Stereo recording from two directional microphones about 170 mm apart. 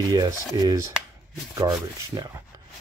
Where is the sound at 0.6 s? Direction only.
20° right (ahead or behind).